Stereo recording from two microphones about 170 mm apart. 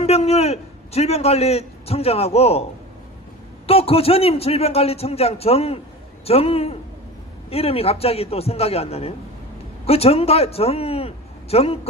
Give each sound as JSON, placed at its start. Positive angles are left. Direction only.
{"t": 0.0, "sound": "a man's voice", "side_deg": 40}
{"t": 3.6, "sound": "a man's voice", "side_deg": 35}